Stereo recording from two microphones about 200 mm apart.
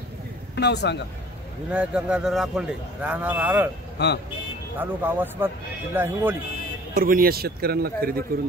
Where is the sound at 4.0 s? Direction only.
55° left (ahead or behind).